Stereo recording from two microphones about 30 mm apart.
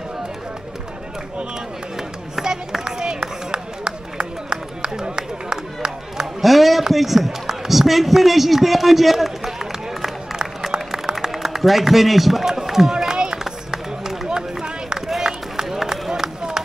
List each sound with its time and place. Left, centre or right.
2.4 s run: right
5.0 s a sound: right
6.4 s chop: centre
6.9 s run: centre
7.2 s a sound: centre
10.6 s a sound: centre
11.1 s a man's voice: centre
12.6 s run: centre
13.1 s run: right